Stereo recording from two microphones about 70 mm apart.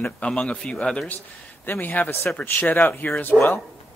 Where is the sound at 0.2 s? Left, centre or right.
Centre.